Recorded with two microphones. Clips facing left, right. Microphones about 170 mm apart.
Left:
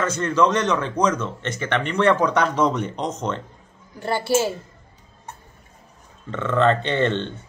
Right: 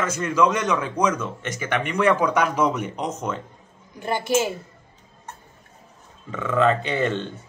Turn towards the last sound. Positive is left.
turn(degrees=-5)  # may be behind; listen again after turning